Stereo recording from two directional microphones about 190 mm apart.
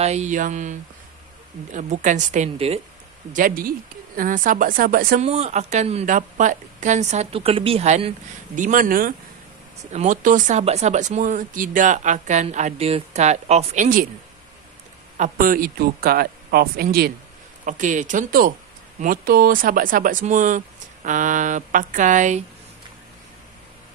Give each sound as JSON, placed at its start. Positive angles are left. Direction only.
{"t": 0.0, "sound": "speech", "side_deg": -35}
{"t": 3.3, "sound": "speech", "side_deg": -50}
{"t": 5.2, "sound": "speech", "side_deg": -35}
{"t": 8.5, "sound": "speech", "side_deg": -45}
{"t": 15.1, "sound": "speech", "side_deg": -45}
{"t": 17.6, "sound": "speech", "side_deg": -40}